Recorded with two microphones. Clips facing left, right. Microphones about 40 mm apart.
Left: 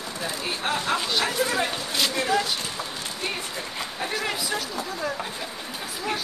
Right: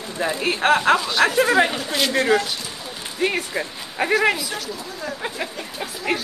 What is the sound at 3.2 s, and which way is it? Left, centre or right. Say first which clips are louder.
Speech: right 10 dB; right.